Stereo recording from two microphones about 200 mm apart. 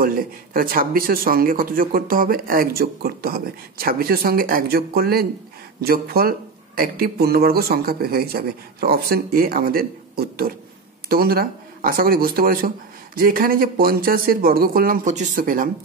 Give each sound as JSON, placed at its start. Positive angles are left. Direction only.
{"t": 0.0, "sound": "speech", "side_deg": -45}